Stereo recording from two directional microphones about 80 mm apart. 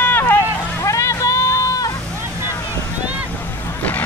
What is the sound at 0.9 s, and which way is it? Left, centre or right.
Boat, left.